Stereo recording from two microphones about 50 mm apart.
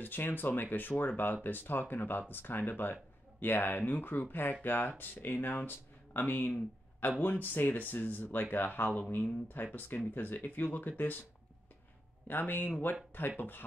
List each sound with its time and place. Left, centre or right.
0.0 s speech: left
12.3 s speech: left